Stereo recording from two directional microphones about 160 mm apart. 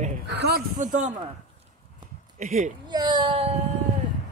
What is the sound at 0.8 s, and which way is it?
Speech, 55° right (ahead or behind).